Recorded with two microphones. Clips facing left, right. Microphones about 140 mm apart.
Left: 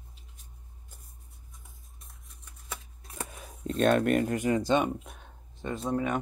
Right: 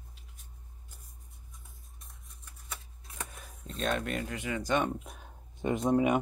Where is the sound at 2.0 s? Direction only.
Centre (ahead or behind).